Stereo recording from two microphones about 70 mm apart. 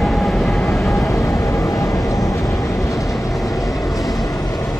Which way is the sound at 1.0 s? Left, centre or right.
Left.